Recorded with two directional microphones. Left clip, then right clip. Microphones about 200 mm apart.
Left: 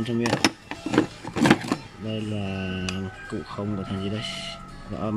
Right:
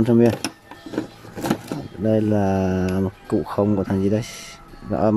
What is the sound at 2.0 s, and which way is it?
Speech, 30° right (ahead or behind).